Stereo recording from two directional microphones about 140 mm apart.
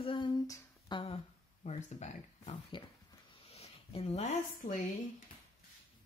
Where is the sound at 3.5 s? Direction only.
45° left (ahead or behind).